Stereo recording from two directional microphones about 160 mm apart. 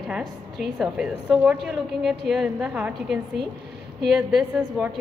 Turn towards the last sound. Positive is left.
turn(degrees=-5)  # may be behind; listen again after turning